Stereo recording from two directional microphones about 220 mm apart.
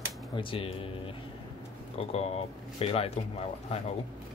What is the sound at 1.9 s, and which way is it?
Speech, 25° left (ahead or behind).